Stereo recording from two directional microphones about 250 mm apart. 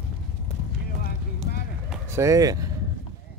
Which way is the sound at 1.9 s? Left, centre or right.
Centre.